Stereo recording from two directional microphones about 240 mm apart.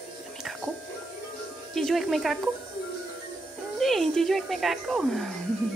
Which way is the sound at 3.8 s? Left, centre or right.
Centre.